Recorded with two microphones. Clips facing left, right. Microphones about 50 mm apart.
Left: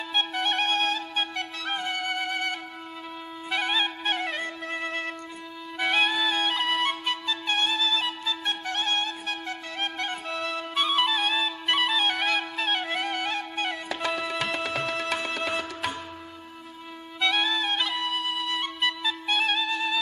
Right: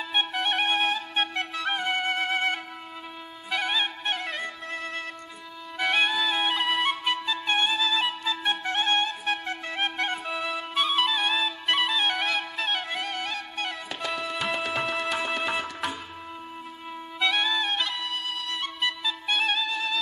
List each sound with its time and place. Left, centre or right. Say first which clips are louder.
0.1 s flute: even; centre
1.1 s flute: right 2 dB; right
3.4 s music: left 1 dB; centre
4.4 s music: left 2 dB; left
5.8 s flute: even; centre; by 10.1 s right
10.1 s flute: right 1 dB; centre
14.0 s music: even; centre
17.2 s music: even; centre